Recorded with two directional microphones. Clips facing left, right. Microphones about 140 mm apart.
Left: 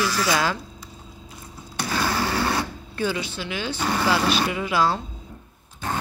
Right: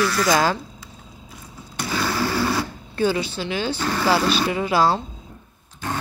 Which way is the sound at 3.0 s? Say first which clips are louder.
Right 5 dB; 30° right (ahead or behind).